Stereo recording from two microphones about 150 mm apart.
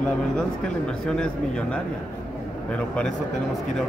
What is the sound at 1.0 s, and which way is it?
Speech, 5° left (ahead or behind).